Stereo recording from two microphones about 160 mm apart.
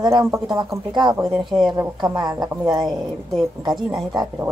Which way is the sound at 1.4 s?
Centre (ahead or behind).